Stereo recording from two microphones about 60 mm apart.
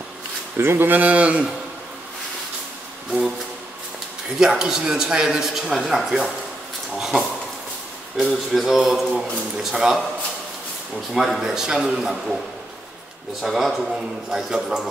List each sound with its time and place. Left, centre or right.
0.6 s speech: right
3.1 s music: centre
4.4 s a man's voice: centre
7.0 s a sound: centre
8.2 s speech: centre
11.1 s a man's voice: centre
13.4 s a man's voice: centre